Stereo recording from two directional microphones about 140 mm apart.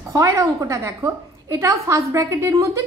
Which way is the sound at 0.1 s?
20° right (ahead or behind).